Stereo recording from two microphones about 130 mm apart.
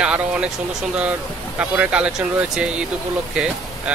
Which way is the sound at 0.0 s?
10° right (ahead or behind).